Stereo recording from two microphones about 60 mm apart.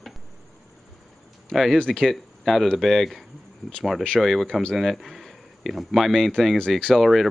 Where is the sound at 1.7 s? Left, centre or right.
Centre.